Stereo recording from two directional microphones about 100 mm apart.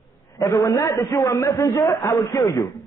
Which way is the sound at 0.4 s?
40° left (ahead or behind).